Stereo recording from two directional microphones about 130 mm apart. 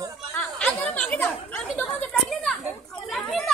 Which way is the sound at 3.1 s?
5° left (ahead or behind).